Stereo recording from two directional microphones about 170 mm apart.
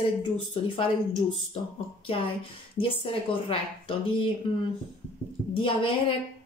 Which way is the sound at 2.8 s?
30° left (ahead or behind).